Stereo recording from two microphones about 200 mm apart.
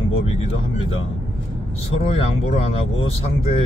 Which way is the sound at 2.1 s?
30° left (ahead or behind).